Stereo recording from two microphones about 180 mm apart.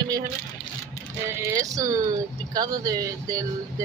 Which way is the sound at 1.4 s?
20° right (ahead or behind).